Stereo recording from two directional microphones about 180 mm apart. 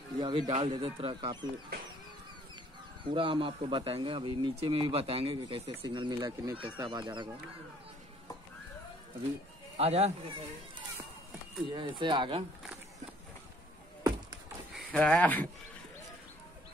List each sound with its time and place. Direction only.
0.2 s speech: 25° right (ahead or behind)
3.0 s speech: 25° right (ahead or behind)
9.8 s speech: 35° right (ahead or behind)
11.7 s speech: 25° right (ahead or behind)
14.9 s speech: 5° left (ahead or behind)